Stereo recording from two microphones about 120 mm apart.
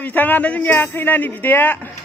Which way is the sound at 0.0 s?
15° left (ahead or behind).